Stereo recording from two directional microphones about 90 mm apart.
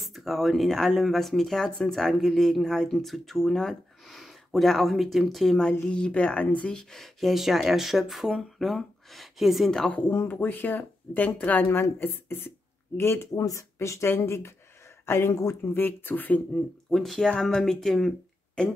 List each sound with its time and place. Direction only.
0.0 s a woman's voice: centre (ahead or behind)
9.9 s speech: 20° left (ahead or behind)
13.3 s speech: 40° left (ahead or behind); by 16.6 s 15° left (ahead or behind)
16.9 s speech: 5° left (ahead or behind)